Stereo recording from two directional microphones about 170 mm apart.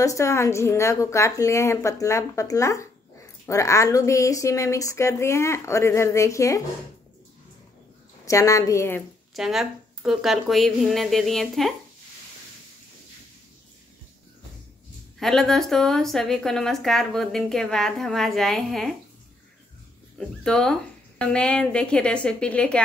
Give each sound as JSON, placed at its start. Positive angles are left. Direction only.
{"t": 0.0, "sound": "a woman's voice", "side_deg": 20}
{"t": 8.3, "sound": "a woman's voice", "side_deg": 20}
{"t": 9.3, "sound": "a woman's voice", "side_deg": 0}
{"t": 15.1, "sound": "a woman's voice", "side_deg": 0}
{"t": 20.2, "sound": "a woman's voice", "side_deg": 5}